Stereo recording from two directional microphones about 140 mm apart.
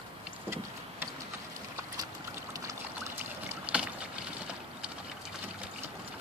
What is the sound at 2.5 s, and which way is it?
Rowboat, 20° right (ahead or behind).